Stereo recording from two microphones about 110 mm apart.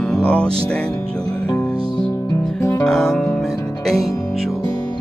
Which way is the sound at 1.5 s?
10° left (ahead or behind).